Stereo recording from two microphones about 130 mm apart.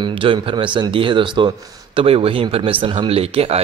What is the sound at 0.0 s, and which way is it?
Speech, 40° right (ahead or behind).